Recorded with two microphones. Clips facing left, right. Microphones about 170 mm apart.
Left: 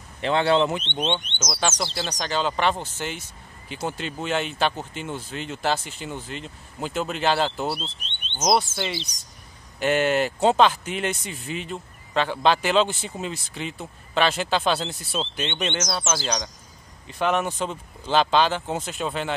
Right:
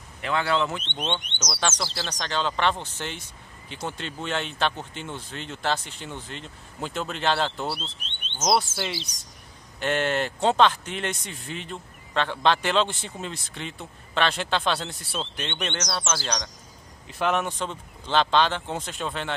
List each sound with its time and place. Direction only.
0.2 s speech: 25° left (ahead or behind)
1.2 s speech: 15° right (ahead or behind)
1.5 s speech: 10° left (ahead or behind); by 9.1 s 5° right (ahead or behind)
9.8 s speech: 5° left (ahead or behind)